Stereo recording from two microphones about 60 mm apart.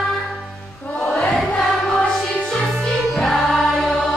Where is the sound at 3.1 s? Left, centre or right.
Centre.